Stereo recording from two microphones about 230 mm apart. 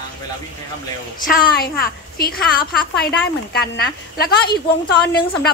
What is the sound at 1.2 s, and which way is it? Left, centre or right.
Speech, left.